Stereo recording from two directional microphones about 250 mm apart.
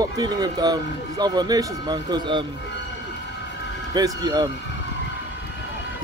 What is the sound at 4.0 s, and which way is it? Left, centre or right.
Speech, centre.